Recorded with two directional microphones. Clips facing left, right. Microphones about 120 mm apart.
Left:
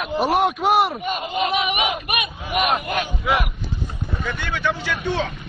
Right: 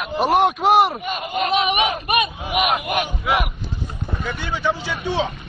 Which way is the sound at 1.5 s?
25° right (ahead or behind).